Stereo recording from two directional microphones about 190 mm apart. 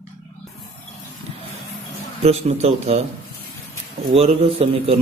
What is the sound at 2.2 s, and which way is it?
Speech, 35° right (ahead or behind).